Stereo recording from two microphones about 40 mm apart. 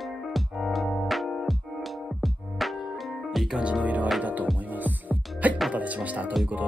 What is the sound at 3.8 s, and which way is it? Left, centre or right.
Music, right.